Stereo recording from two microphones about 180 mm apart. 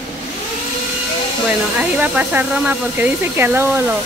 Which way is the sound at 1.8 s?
10° right (ahead or behind).